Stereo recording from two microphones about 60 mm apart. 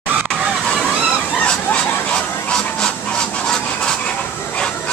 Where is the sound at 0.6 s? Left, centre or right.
Centre.